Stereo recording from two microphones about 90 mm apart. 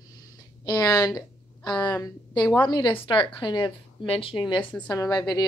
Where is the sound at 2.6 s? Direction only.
60° left (ahead or behind).